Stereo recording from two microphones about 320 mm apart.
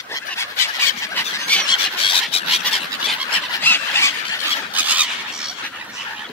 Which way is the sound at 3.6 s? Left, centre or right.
Centre.